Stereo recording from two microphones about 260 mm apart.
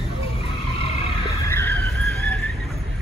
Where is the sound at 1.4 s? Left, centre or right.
Centre.